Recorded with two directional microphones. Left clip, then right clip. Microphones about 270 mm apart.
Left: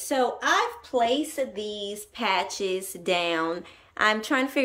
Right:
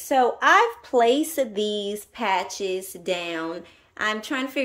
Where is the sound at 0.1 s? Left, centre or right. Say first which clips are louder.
Right 6 dB; centre.